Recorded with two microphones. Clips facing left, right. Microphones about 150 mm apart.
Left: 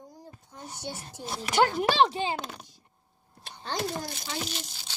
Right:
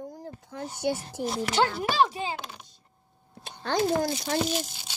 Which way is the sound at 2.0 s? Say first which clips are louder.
Right 1 dB; 25° left (ahead or behind).